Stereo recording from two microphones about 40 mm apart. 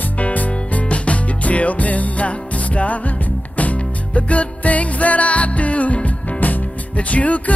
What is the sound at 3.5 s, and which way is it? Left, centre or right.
Music, left.